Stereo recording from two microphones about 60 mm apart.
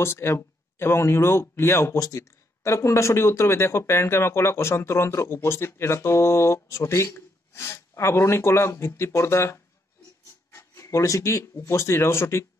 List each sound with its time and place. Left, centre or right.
0.0 s speech: left
2.0 s speech: left
2.6 s speech: left